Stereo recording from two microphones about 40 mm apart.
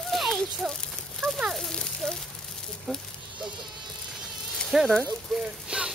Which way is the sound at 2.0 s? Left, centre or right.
Left.